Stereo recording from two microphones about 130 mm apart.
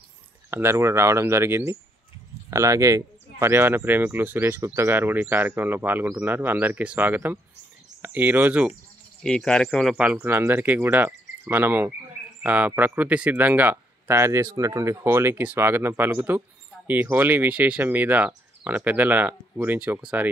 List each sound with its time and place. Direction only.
0.5 s speech: 20° right (ahead or behind)
9.2 s speech: 5° left (ahead or behind)
9.9 s speech: 10° right (ahead or behind)